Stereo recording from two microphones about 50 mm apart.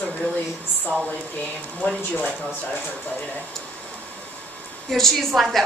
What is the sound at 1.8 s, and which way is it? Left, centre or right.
Speech, left.